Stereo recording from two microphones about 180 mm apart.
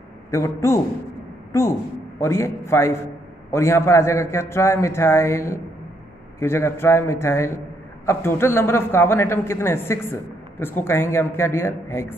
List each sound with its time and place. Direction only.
0.3 s a man's voice: 15° left (ahead or behind)